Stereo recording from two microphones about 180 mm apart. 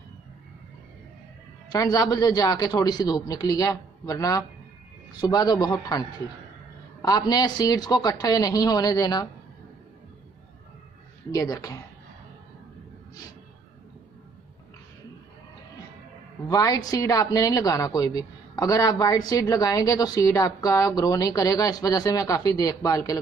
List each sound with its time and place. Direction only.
1.7 s a woman's voice: 20° left (ahead or behind)
11.3 s a woman's voice: 20° left (ahead or behind)
16.4 s a woman's voice: 20° left (ahead or behind)